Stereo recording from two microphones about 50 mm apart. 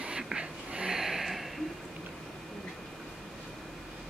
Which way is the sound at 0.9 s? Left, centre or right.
Centre.